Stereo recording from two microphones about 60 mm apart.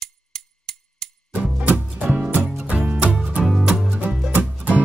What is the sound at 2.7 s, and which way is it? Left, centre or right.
Music, right.